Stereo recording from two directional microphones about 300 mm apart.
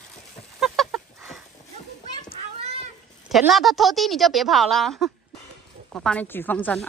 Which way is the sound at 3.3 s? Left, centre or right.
Centre.